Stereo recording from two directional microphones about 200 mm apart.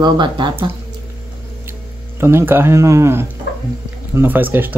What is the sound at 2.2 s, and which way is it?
Speech, 10° right (ahead or behind).